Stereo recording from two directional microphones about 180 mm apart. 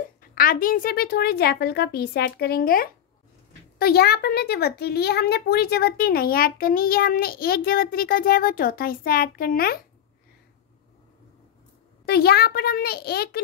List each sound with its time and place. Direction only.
0.3 s a woman's voice: 50° left (ahead or behind)
12.1 s a woman's voice: 60° left (ahead or behind)